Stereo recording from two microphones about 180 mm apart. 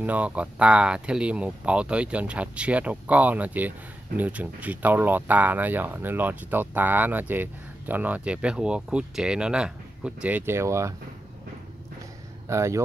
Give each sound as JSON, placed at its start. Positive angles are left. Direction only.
{"t": 0.0, "sound": "speech", "side_deg": -10}
{"t": 12.4, "sound": "speech", "side_deg": -15}